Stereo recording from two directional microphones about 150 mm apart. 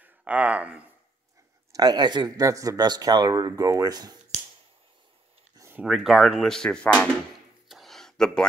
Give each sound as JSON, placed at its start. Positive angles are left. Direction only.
{"t": 0.0, "sound": "speech", "side_deg": -10}
{"t": 1.7, "sound": "speech", "side_deg": -25}
{"t": 5.6, "sound": "speech", "side_deg": -10}
{"t": 7.6, "sound": "a sound", "side_deg": 0}